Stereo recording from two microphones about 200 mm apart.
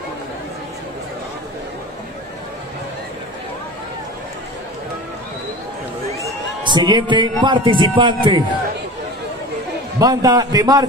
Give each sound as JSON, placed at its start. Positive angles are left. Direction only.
{"t": 6.2, "sound": "a man's voice", "side_deg": -20}
{"t": 9.9, "sound": "a man's voice", "side_deg": -20}